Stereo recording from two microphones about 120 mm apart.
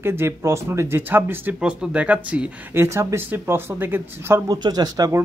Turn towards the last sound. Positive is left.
turn(degrees=-30)  # may be behind; listen again after turning